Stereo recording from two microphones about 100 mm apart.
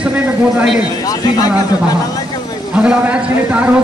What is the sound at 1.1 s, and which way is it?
Speech, 40° left (ahead or behind).